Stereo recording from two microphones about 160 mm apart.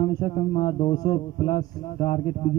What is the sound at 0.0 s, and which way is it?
A man's voice, 30° left (ahead or behind).